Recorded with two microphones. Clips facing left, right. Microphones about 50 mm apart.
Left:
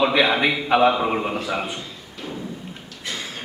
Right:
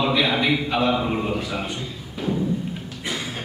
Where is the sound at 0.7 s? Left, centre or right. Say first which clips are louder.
Left 4 dB; left.